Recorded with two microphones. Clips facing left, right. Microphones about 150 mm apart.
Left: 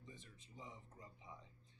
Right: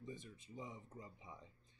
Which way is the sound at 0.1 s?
15° right (ahead or behind).